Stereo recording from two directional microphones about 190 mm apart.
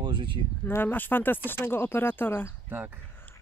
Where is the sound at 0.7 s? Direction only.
10° left (ahead or behind).